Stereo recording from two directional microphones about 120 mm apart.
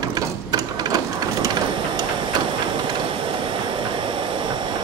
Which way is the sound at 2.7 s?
40° right (ahead or behind).